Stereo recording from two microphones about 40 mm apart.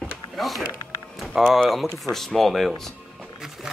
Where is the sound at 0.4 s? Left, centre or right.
Centre.